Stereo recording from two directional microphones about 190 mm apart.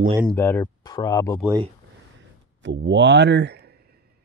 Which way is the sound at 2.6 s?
70° right (ahead or behind).